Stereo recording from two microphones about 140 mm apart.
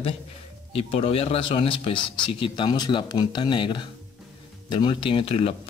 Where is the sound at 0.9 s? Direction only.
45° left (ahead or behind).